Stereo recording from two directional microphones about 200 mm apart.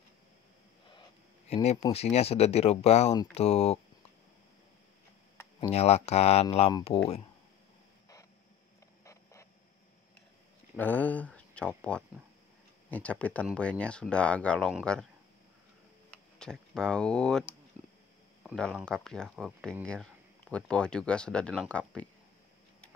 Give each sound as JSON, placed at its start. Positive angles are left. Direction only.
{"t": 1.5, "sound": "speech", "side_deg": 30}
{"t": 5.7, "sound": "speech", "side_deg": 30}
{"t": 9.0, "sound": "a sound", "side_deg": 15}
{"t": 10.8, "sound": "speech", "side_deg": 10}
{"t": 16.3, "sound": "speech", "side_deg": 5}